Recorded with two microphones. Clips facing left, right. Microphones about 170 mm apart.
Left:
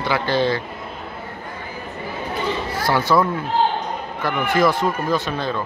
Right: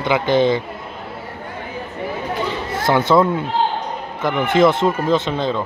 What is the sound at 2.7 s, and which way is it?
Speech, 25° right (ahead or behind).